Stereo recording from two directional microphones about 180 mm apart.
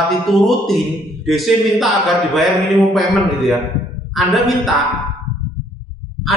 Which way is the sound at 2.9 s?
Centre (ahead or behind).